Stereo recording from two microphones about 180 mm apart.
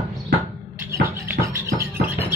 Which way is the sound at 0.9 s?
15° right (ahead or behind).